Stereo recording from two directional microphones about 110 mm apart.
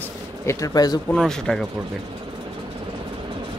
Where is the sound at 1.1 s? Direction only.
5° left (ahead or behind).